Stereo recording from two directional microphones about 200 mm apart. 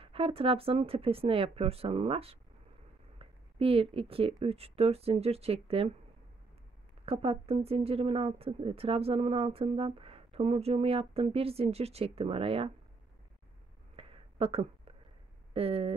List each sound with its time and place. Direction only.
0.0 s speech: 25° right (ahead or behind)
7.1 s speech: 30° right (ahead or behind)
13.9 s a sound: 30° right (ahead or behind)
15.5 s speech: 30° right (ahead or behind)